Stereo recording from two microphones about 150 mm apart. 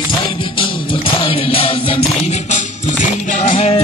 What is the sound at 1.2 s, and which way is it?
Music, 35° left (ahead or behind).